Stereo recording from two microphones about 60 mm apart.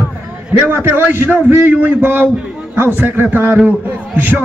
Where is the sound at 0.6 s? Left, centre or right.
Right.